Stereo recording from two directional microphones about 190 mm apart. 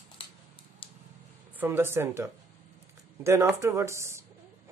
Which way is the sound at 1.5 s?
10° right (ahead or behind).